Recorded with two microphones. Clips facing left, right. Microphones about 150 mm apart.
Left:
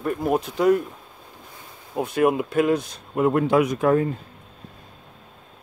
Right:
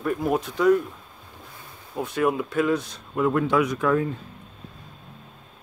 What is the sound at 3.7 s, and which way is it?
Speech, 40° left (ahead or behind).